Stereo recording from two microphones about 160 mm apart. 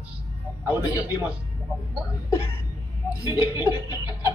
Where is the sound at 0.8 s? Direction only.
25° left (ahead or behind).